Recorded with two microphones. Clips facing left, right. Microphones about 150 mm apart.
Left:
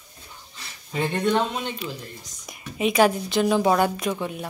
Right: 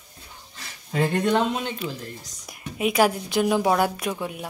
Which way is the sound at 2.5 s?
5° right (ahead or behind).